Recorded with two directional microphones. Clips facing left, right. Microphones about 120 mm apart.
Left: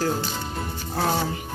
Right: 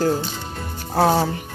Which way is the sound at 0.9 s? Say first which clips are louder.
Right 7 dB; 45° right (ahead or behind).